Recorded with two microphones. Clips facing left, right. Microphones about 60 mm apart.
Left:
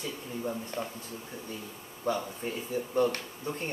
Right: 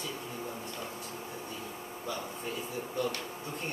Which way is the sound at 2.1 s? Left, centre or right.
Left.